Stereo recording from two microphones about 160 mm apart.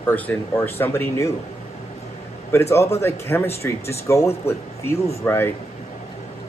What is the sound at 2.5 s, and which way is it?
Speech, 15° left (ahead or behind).